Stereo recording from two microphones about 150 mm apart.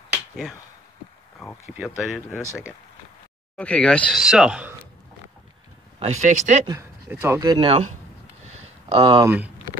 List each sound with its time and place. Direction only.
1.7 s speech: centre (ahead or behind)
3.5 s speech: 5° left (ahead or behind)
4.2 s speech: 5° right (ahead or behind)
5.9 s speech: 50° right (ahead or behind)
7.1 s speech: 10° right (ahead or behind)
7.3 s speech: 25° right (ahead or behind)
7.6 s speech: 40° right (ahead or behind)
8.5 s a sound: 40° right (ahead or behind)
9.2 s speech: 10° right (ahead or behind)